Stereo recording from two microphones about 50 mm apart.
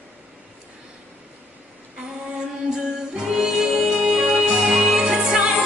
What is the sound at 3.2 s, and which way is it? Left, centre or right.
Music, centre.